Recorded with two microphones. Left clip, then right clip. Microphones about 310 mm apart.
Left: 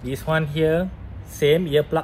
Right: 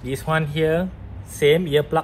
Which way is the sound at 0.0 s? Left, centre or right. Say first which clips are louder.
Even; centre.